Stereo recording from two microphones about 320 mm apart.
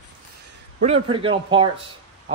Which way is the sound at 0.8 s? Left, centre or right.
Centre.